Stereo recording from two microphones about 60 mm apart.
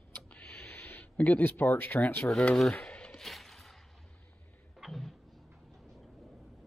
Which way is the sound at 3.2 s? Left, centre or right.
Centre.